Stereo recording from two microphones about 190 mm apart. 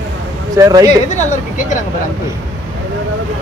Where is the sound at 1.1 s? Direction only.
40° left (ahead or behind).